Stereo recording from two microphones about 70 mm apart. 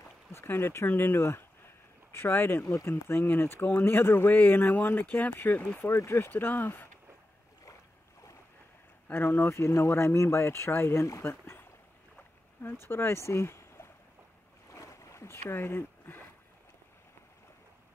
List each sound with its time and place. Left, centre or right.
0.3 s speech: left
5.8 s speech: left
9.1 s speech: left
12.8 s speech: left
14.7 s boat: left
15.5 s speech: left